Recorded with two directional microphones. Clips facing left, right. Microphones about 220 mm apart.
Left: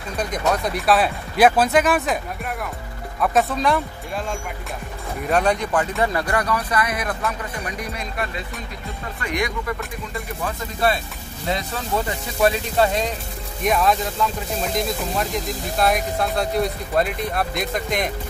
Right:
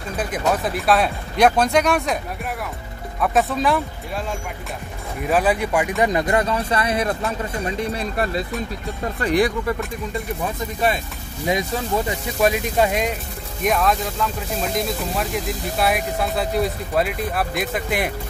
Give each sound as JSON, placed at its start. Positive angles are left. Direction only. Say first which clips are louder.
{"t": 0.2, "sound": "speech", "louder": "even", "side_deg": -5}
{"t": 3.2, "sound": "speech", "louder": "even", "side_deg": 0}
{"t": 5.2, "sound": "speech", "louder": "right 1 dB", "side_deg": -5}
{"t": 11.4, "sound": "speech", "louder": "right 4 dB", "side_deg": -15}
{"t": 13.7, "sound": "speech", "louder": "even", "side_deg": 0}